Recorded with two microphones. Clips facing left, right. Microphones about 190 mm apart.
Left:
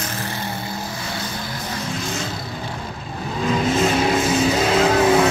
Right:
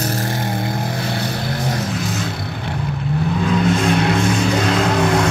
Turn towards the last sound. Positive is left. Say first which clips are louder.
# left 1 dB
turn(degrees=5)  # may be behind; listen again after turning